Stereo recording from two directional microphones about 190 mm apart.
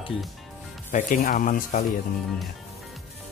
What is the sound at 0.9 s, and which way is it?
Speech, 40° left (ahead or behind).